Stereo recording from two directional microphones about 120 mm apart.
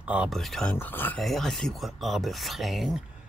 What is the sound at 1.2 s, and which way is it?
Speech, centre (ahead or behind).